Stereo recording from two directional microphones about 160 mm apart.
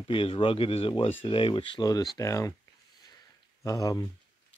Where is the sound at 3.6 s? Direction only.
20° left (ahead or behind).